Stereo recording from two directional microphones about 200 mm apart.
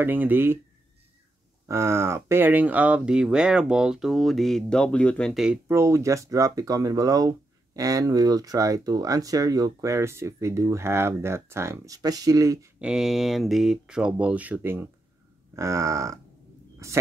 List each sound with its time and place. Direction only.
0.0 s speech: 10° right (ahead or behind)
1.7 s speech: 15° right (ahead or behind)
12.7 s speech: 5° right (ahead or behind)